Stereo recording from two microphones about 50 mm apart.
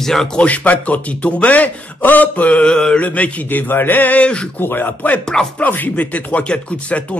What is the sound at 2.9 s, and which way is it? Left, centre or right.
Speech, left.